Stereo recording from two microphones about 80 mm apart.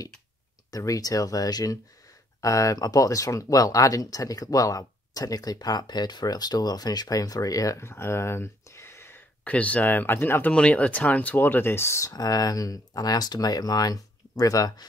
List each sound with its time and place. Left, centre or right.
0.7 s speech: left
9.4 s speech: centre
10.5 s speech: centre; by 12.1 s left
12.1 s speech: left